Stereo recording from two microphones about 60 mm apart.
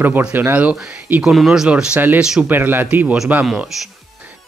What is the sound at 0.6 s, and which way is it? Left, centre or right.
Speech, right.